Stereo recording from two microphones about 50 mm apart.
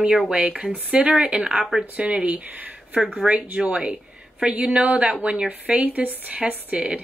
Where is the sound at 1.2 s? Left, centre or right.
Centre.